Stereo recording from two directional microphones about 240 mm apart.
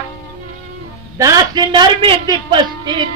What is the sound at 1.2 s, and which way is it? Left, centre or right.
A man's voice, centre.